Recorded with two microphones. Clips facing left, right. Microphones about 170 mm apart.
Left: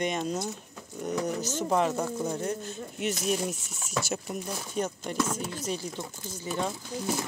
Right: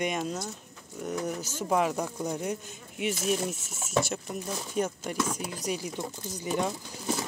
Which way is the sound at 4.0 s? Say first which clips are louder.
Even; 5° left (ahead or behind).